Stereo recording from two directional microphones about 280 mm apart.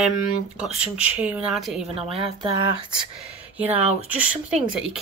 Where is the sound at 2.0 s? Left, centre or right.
Right.